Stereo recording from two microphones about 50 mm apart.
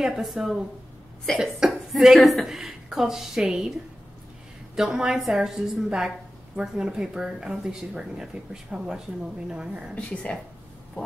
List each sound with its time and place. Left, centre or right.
0.0 s speech: centre
1.3 s cough: centre
1.7 s a sound: centre
2.1 s a woman's voice: centre
4.7 s a woman's voice: centre
10.3 s speech: left